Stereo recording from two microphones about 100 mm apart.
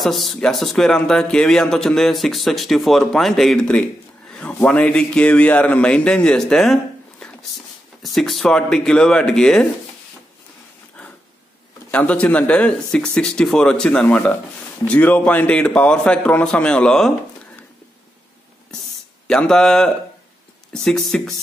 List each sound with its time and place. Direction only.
0.0 s speech: centre (ahead or behind)
11.9 s speech: 15° left (ahead or behind)
19.2 s speech: 5° left (ahead or behind)